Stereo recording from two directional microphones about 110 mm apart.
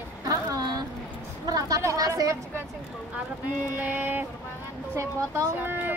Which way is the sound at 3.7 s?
15° right (ahead or behind).